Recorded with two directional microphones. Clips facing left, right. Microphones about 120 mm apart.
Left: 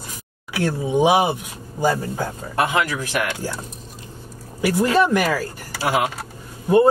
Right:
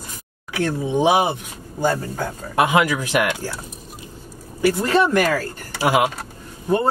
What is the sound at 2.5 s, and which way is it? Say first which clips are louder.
Speech: right 4 dB; 15° right (ahead or behind).